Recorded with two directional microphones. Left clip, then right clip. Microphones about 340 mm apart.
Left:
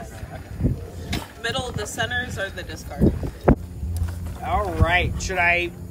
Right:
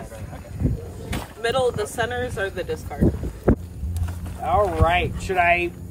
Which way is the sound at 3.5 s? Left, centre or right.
Centre.